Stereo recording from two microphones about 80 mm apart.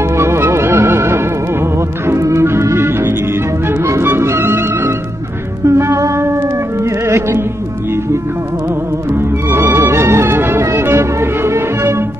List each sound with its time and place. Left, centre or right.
0.2 s music: right
9.1 s music: right